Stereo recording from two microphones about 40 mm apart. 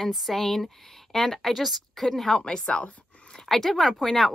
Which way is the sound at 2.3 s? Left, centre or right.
Centre.